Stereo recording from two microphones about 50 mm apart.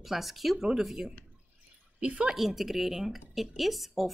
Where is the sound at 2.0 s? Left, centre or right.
Right.